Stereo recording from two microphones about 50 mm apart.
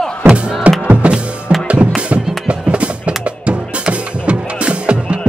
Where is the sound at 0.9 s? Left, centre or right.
Right.